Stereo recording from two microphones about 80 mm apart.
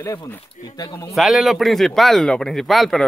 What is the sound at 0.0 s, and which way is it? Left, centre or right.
Speech, left.